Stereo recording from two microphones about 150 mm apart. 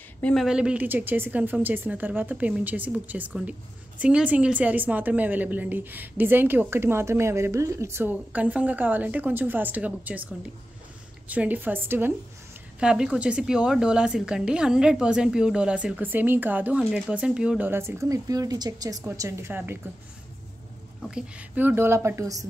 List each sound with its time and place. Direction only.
0.2 s a woman's voice: 5° left (ahead or behind); by 19.8 s 15° right (ahead or behind)
21.1 s a woman's voice: 10° right (ahead or behind)